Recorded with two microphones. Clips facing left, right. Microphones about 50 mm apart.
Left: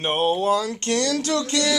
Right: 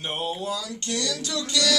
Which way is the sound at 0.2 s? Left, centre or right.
Left.